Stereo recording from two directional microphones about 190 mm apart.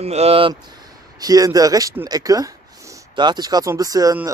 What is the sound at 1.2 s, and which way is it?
Speech, 20° right (ahead or behind).